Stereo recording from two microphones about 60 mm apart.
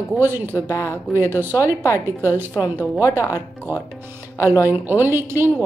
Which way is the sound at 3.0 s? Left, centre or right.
Left.